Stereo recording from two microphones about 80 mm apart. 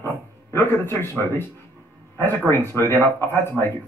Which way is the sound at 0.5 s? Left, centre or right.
Left.